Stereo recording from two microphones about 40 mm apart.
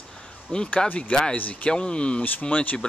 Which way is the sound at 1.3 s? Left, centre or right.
Left.